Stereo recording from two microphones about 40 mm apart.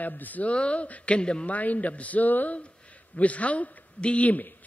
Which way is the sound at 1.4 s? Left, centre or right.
Left.